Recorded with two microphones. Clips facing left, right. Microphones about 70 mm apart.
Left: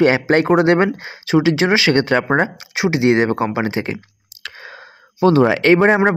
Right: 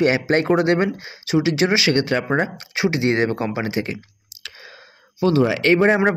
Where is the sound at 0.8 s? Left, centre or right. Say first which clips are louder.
Left 4 dB; left.